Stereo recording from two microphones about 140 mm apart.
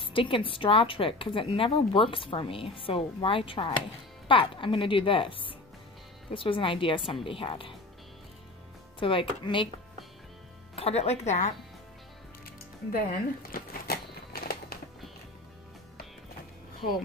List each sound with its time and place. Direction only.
0.0 s a woman's voice: 40° left (ahead or behind)
9.0 s a woman's voice: 35° left (ahead or behind)
10.8 s speech: 50° left (ahead or behind)
12.9 s a sound: 90° left